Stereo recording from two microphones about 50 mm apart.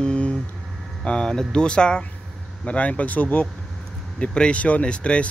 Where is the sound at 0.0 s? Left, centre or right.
Left.